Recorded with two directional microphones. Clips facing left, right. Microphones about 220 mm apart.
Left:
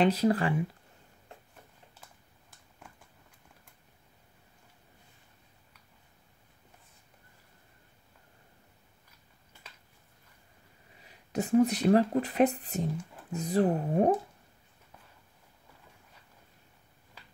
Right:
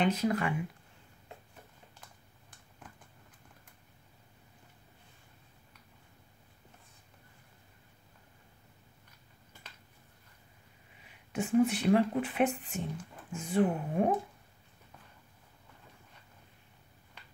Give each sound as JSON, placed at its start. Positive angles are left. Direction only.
{"t": 0.0, "sound": "speech", "side_deg": 35}
{"t": 11.3, "sound": "speech", "side_deg": 40}